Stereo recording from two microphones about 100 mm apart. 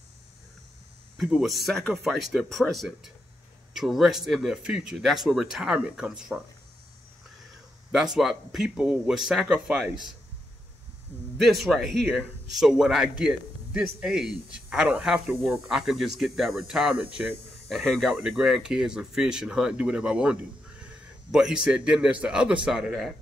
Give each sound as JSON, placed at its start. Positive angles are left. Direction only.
{"t": 1.1, "sound": "a man's voice", "side_deg": 0}
{"t": 7.9, "sound": "a man's voice", "side_deg": -5}
{"t": 11.3, "sound": "a man's voice", "side_deg": 0}
{"t": 17.6, "sound": "a man's voice", "side_deg": 0}